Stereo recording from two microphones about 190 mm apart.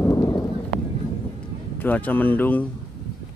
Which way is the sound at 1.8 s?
10° left (ahead or behind).